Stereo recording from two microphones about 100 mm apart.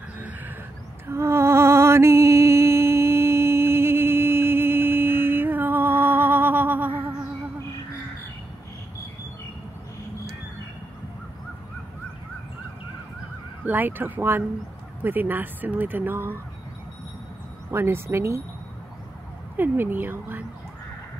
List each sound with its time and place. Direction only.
1.0 s music: 25° right (ahead or behind)
13.7 s speech: 20° right (ahead or behind)
17.6 s speech: 25° right (ahead or behind)
19.5 s speech: 20° right (ahead or behind)